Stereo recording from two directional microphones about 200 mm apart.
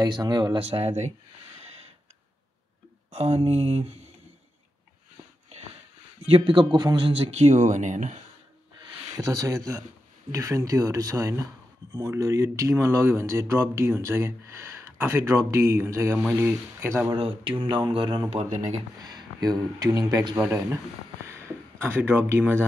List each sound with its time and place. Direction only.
0.0 s speech: 20° right (ahead or behind)
3.1 s speech: 30° right (ahead or behind)
6.2 s speech: 25° right (ahead or behind)
9.1 s speech: 15° right (ahead or behind)
17.2 s speech: 25° right (ahead or behind)
18.9 s speech: 20° right (ahead or behind)
21.3 s a sound: 15° right (ahead or behind)